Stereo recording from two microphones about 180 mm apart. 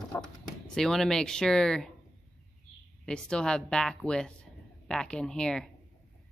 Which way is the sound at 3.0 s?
5° left (ahead or behind).